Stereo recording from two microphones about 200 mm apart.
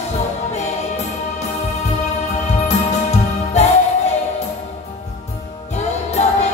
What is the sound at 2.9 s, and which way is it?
Music, 35° left (ahead or behind).